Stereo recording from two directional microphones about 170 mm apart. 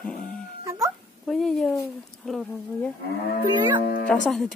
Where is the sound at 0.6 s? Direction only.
20° right (ahead or behind).